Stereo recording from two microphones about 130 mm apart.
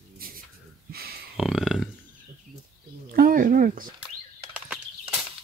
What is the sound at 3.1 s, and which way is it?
Speech, 90° right.